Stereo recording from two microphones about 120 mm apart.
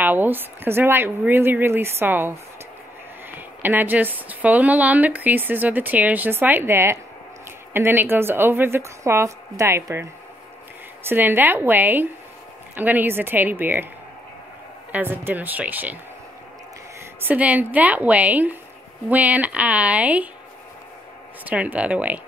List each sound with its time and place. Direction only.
0.0 s a woman's voice: 15° right (ahead or behind)
11.1 s a woman's voice: 15° right (ahead or behind)
14.9 s a woman's voice: 15° right (ahead or behind)
17.2 s a woman's voice: 15° right (ahead or behind)
21.5 s a woman's voice: 10° right (ahead or behind)